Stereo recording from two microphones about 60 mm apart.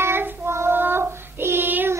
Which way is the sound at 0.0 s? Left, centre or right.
Right.